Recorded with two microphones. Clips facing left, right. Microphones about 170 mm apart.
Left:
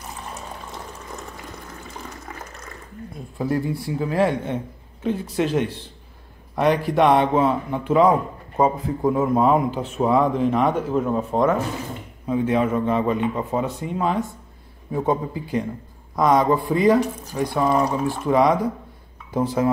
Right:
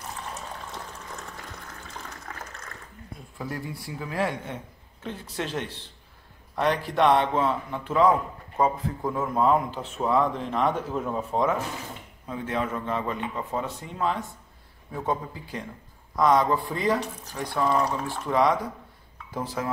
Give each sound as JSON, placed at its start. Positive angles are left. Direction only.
{"t": 0.7, "sound": "water", "side_deg": 10}
{"t": 3.3, "sound": "speech", "side_deg": 30}
{"t": 5.0, "sound": "a man's voice", "side_deg": 10}
{"t": 12.3, "sound": "a man's voice", "side_deg": 15}